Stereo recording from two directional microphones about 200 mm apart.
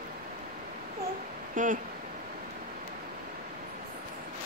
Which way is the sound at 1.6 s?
40° right (ahead or behind).